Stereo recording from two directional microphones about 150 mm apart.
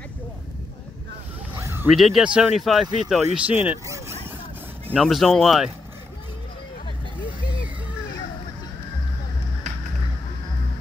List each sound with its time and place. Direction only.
1.6 s a sound: 15° right (ahead or behind)
1.9 s speech: centre (ahead or behind)
5.0 s speech: 5° left (ahead or behind)